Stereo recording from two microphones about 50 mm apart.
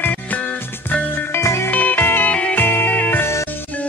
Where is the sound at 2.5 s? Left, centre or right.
Left.